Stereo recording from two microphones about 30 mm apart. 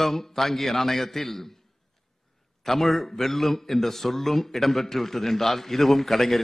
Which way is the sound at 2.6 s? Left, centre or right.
Centre.